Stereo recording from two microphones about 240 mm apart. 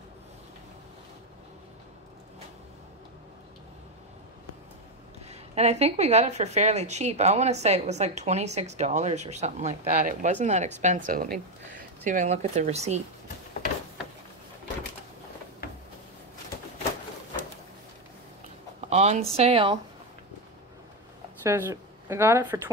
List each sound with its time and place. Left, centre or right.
5.3 s a woman's voice: right
18.9 s a woman's voice: right
21.4 s speech: centre